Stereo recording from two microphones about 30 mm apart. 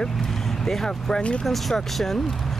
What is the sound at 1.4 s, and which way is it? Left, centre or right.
Speech, centre.